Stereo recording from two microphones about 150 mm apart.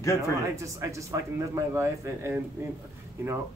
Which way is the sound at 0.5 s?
20° right (ahead or behind).